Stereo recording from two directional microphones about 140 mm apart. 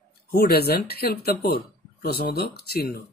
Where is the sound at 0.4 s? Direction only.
90° left.